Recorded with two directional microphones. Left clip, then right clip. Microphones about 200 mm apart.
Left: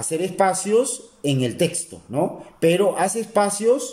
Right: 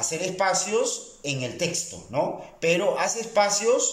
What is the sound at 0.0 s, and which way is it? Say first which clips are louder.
Speech: left 5 dB; 40° left (ahead or behind).